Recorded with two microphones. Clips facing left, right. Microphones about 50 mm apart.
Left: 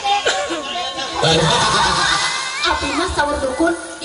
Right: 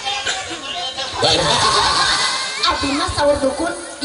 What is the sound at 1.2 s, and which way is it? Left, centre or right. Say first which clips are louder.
Crowd: left 1 dB; left.